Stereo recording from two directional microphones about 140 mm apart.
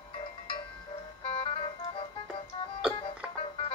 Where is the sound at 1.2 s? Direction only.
40° left (ahead or behind).